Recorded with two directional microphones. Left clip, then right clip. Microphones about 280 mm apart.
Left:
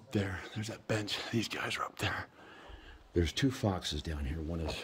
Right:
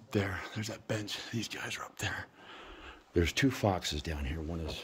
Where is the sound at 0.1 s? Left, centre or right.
Centre.